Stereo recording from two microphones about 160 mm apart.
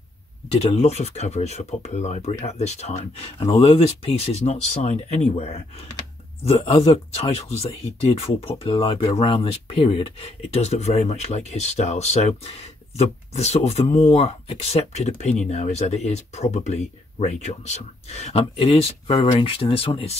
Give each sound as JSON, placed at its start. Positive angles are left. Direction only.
{"t": 0.5, "sound": "speech", "side_deg": 40}